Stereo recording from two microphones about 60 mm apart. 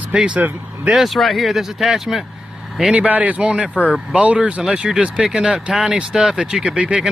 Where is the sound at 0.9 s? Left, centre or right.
Centre.